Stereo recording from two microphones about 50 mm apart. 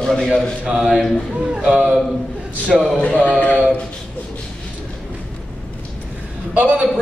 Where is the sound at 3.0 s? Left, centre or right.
Left.